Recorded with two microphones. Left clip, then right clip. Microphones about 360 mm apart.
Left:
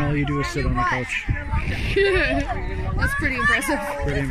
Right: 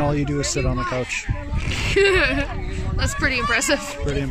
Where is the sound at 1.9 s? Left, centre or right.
Right.